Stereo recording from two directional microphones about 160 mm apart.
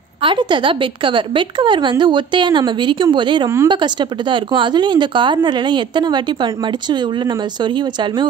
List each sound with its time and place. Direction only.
0.2 s a woman's voice: 30° right (ahead or behind)